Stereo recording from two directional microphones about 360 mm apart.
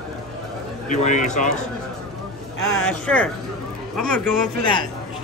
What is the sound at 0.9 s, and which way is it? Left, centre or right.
Speech, left.